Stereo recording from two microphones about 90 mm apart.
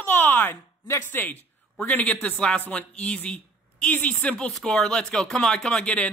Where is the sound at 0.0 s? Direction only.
20° left (ahead or behind).